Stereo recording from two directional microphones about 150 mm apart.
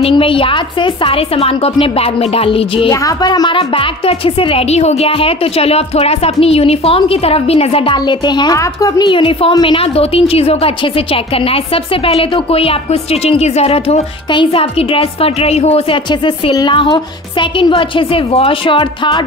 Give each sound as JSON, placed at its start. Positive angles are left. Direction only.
{"t": 0.0, "sound": "speech", "side_deg": 35}
{"t": 2.9, "sound": "speech", "side_deg": 20}
{"t": 16.1, "sound": "speech", "side_deg": 30}